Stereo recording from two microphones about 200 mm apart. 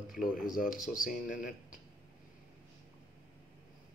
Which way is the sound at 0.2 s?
45° left (ahead or behind).